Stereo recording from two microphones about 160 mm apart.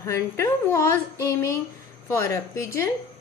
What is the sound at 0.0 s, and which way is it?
A woman's voice, 20° left (ahead or behind).